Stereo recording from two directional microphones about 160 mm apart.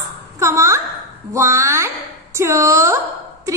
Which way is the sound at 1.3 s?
20° right (ahead or behind).